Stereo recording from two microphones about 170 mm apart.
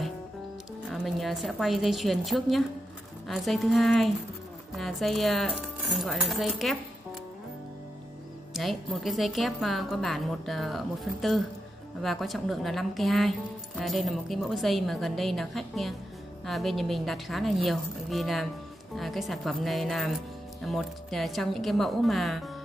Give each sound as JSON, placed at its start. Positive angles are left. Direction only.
{"t": 0.8, "sound": "a woman's voice", "side_deg": 0}
{"t": 8.5, "sound": "a woman's voice", "side_deg": 0}